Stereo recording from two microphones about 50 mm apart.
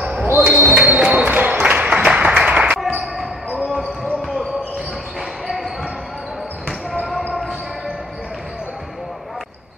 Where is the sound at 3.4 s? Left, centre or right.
Right.